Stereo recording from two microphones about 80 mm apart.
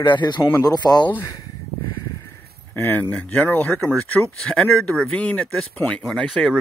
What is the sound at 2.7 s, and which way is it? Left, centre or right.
Speech, left.